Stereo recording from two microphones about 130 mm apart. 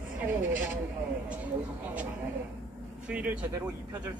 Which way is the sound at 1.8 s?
15° right (ahead or behind).